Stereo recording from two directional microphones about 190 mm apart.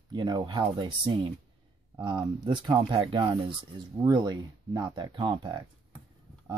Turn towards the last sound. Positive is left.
turn(degrees=-25)  # may be behind; listen again after turning